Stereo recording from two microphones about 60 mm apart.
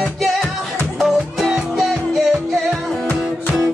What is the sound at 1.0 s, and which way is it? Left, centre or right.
Music, centre.